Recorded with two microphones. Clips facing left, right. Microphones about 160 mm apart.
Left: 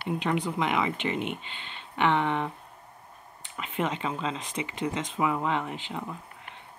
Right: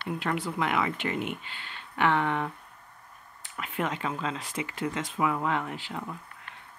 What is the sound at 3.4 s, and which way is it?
Speech, 20° left (ahead or behind).